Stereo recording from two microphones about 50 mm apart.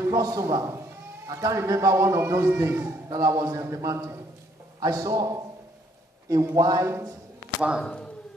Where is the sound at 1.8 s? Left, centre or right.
Right.